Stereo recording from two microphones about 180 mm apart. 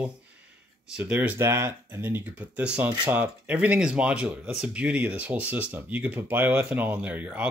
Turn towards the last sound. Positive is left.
turn(degrees=-5)  # may be behind; listen again after turning